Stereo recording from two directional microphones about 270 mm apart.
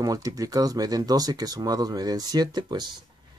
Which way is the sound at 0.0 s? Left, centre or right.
Centre.